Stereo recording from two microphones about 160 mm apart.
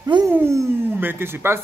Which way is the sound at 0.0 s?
25° right (ahead or behind).